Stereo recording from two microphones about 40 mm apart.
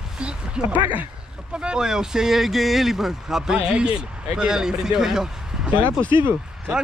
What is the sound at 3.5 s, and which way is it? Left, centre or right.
Speech, right.